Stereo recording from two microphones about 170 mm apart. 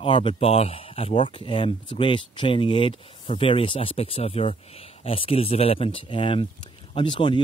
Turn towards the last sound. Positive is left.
turn(degrees=30)  # may be behind; listen again after turning